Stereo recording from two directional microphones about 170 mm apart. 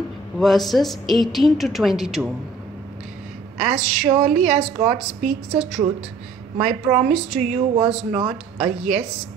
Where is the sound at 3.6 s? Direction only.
5° right (ahead or behind).